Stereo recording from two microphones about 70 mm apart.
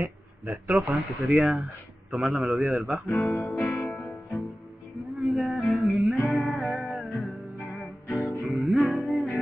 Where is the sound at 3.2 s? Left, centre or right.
Centre.